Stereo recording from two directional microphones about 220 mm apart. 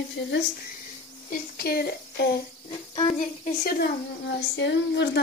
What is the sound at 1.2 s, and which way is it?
Speech, 40° left (ahead or behind).